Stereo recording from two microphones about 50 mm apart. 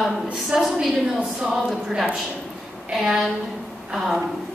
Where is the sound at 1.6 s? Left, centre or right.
Centre.